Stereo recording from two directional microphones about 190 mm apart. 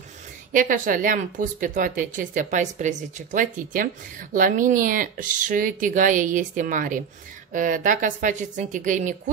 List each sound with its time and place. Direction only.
0.5 s speech: 45° right (ahead or behind)